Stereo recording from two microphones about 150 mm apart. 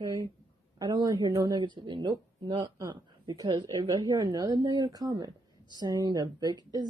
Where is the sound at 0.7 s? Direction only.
25° right (ahead or behind).